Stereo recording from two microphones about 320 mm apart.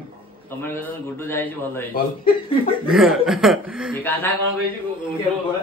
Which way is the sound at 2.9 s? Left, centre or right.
Centre.